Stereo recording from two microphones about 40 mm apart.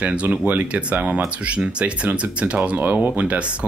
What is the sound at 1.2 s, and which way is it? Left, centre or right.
Speech, right.